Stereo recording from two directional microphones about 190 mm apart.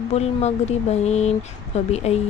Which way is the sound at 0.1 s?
35° left (ahead or behind).